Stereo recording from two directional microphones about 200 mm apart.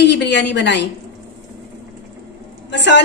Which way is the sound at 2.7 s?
60° left (ahead or behind).